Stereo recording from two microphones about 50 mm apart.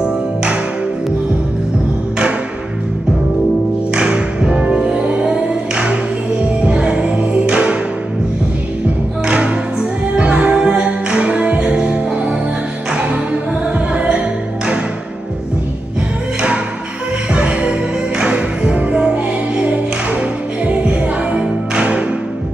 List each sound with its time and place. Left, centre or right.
0.0 s music: centre
3.9 s music: centre
9.2 s music: right
16.3 s music: centre